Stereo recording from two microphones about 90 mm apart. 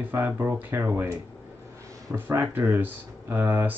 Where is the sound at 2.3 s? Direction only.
25° right (ahead or behind).